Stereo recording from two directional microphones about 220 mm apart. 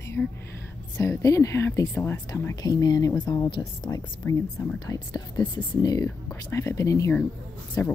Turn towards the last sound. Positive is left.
turn(degrees=15)  # may be behind; listen again after turning